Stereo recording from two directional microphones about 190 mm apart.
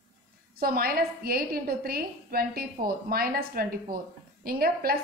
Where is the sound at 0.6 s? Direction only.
50° right (ahead or behind).